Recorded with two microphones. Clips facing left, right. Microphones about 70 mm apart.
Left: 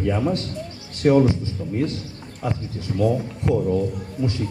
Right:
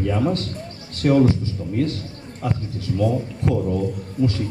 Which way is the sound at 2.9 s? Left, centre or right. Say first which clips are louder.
Right 1 dB; left.